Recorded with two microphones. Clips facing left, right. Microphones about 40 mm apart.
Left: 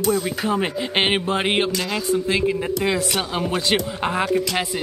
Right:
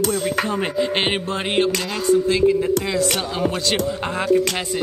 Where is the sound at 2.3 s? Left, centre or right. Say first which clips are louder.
Right 2 dB; left.